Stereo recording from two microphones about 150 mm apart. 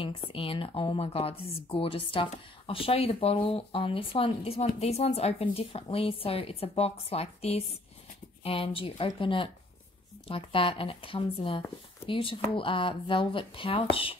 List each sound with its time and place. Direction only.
0.0 s speech: 35° left (ahead or behind)